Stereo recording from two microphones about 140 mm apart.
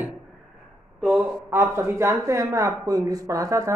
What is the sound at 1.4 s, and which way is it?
Speech, 15° right (ahead or behind).